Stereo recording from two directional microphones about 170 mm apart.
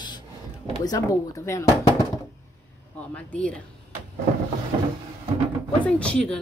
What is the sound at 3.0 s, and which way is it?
Speech, 10° left (ahead or behind).